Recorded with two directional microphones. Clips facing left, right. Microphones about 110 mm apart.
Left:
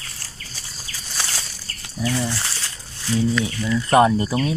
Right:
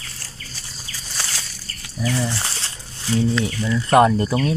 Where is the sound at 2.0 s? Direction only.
Centre (ahead or behind).